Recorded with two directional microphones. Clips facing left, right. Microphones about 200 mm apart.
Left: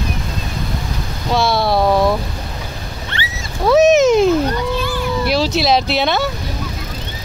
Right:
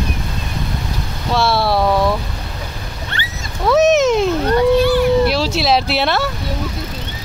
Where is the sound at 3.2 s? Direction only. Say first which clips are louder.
Left 2 dB; 40° right (ahead or behind).